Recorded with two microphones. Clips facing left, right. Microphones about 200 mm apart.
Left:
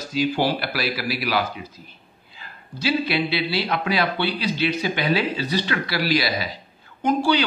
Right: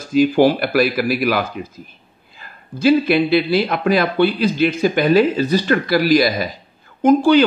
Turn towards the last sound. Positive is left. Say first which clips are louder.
# right 8 dB
turn(degrees=-50)  # may be behind; listen again after turning